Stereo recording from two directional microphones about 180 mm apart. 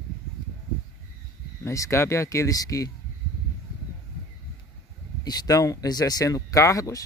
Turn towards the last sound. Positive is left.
turn(degrees=20)  # may be behind; listen again after turning